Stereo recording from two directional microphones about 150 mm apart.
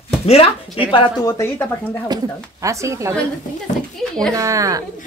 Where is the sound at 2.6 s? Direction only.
20° right (ahead or behind).